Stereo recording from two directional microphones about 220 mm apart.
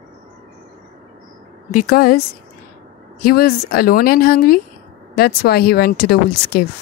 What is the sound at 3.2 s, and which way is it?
Speech, 45° left (ahead or behind).